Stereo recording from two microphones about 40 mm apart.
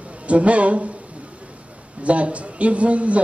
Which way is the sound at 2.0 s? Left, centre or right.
Right.